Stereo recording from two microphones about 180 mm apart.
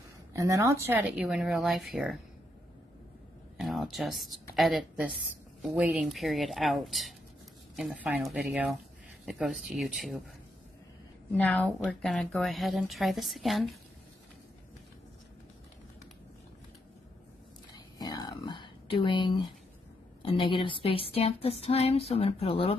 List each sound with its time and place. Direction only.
0.3 s a woman's voice: 15° right (ahead or behind)
3.5 s a woman's voice: centre (ahead or behind)
11.3 s a woman's voice: 10° left (ahead or behind)
17.7 s a sound: 20° left (ahead or behind)